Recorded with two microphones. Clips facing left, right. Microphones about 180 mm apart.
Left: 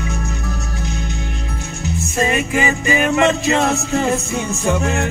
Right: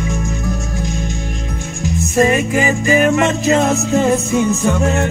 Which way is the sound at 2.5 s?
40° right (ahead or behind).